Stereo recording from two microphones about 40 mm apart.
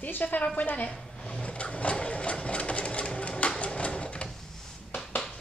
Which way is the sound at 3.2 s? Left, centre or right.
Left.